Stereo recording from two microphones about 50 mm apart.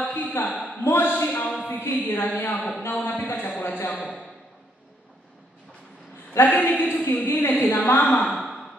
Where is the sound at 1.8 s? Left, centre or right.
Left.